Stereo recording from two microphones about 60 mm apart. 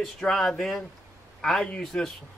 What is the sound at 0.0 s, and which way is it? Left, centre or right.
Speech, centre.